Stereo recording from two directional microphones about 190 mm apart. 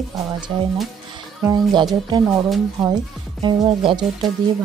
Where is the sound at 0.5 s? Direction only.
25° right (ahead or behind).